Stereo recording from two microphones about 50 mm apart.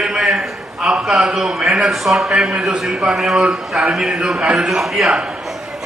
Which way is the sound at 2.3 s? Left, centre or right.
Centre.